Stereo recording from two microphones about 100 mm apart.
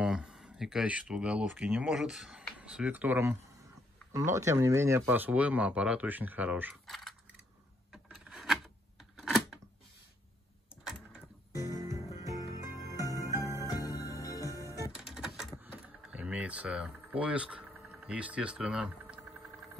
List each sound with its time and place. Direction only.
0.0 s speech: 10° right (ahead or behind)
6.9 s a sound: centre (ahead or behind)
7.9 s rub: 5° right (ahead or behind)
10.8 s printer: 5° right (ahead or behind)
11.5 s music: 30° right (ahead or behind)
13.8 s music: 35° left (ahead or behind)
14.5 s music: 30° right (ahead or behind)
15.0 s vehicle: 5° right (ahead or behind)
15.5 s power windows: 15° right (ahead or behind)